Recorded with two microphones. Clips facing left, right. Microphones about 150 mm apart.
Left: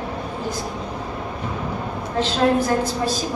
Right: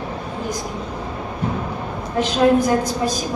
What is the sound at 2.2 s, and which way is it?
A woman's voice, 15° right (ahead or behind).